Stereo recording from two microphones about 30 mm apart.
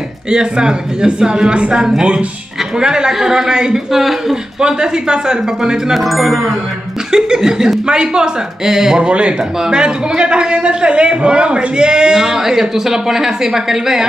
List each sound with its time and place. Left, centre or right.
0.3 s a man's voice: right
1.5 s speech: right
1.8 s a man's voice: right
3.9 s a man's voice: centre
4.6 s a man's voice: right
5.9 s music: centre
7.1 s a man's voice: right
9.0 s speech: right
9.7 s a man's voice: right; by 14.0 s centre